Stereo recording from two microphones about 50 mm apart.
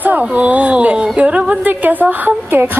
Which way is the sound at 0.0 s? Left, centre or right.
Right.